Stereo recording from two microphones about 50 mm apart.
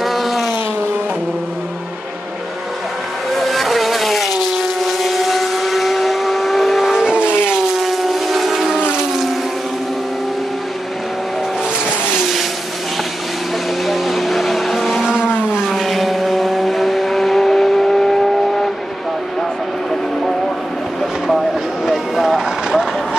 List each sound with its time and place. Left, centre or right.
0.0 s vehicle: centre
3.3 s vehicle: centre
7.5 s a sound: centre
12.2 s vehicle: centre
13.8 s vehicle: centre
15.0 s vehicle: centre
15.7 s vehicle: centre
21.8 s vehicle: centre